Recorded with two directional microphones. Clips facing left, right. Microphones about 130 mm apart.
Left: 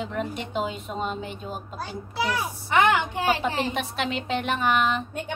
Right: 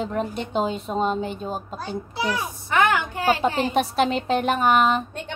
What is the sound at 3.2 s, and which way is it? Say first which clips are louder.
Speech: right 6 dB; 35° right (ahead or behind).